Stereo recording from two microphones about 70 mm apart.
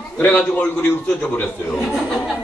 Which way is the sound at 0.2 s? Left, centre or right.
Left.